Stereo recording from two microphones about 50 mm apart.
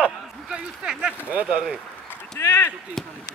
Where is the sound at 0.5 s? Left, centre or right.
Centre.